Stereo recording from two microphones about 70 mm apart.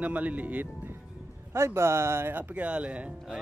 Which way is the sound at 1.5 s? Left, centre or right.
Right.